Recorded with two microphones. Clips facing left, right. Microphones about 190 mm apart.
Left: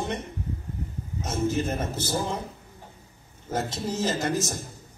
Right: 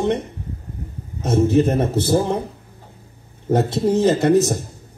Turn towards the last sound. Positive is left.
turn(degrees=-65)  # may be behind; listen again after turning